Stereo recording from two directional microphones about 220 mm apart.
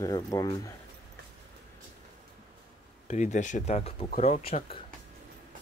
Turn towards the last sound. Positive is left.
turn(degrees=25)  # may be behind; listen again after turning